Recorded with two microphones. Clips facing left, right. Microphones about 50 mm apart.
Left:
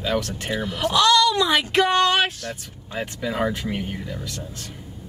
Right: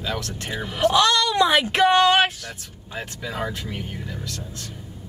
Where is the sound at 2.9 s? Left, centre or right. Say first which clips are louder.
Left 4 dB; centre.